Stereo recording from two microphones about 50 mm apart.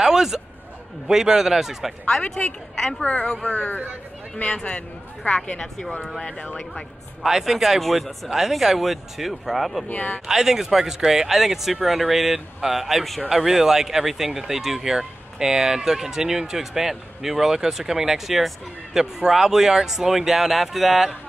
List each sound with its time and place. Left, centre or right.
0.0 s a sound: centre
1.0 s speech: centre
3.0 s speech: left
4.5 s speech: left
5.8 s speech: centre
6.2 s speech: left
7.2 s speech: centre
9.8 s speech: left
10.2 s speech: centre